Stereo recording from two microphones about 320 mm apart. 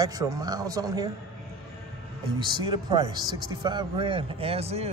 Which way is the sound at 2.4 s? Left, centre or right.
Centre.